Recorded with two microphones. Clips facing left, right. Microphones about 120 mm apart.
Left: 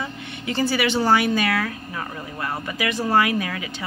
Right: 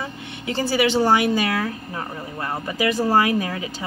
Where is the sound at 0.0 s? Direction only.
25° right (ahead or behind).